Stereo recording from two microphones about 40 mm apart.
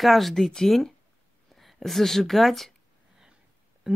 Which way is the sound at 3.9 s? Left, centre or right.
Centre.